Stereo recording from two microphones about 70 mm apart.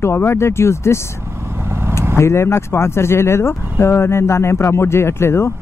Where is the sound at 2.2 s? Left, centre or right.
Left.